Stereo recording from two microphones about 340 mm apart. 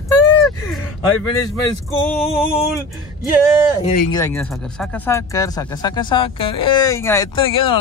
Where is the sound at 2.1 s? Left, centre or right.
Centre.